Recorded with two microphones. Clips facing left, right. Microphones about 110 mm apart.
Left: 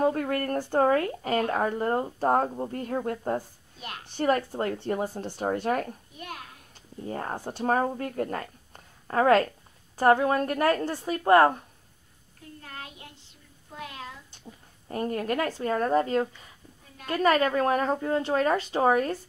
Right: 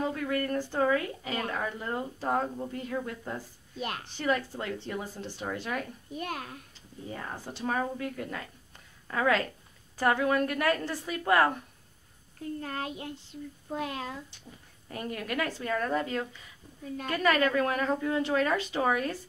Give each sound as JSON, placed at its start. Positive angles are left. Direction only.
{"t": 0.0, "sound": "speech", "side_deg": 45}
{"t": 7.1, "sound": "speech", "side_deg": 45}
{"t": 9.9, "sound": "a woman's voice", "side_deg": 30}
{"t": 12.6, "sound": "child singing", "side_deg": -45}
{"t": 14.9, "sound": "a woman's voice", "side_deg": 35}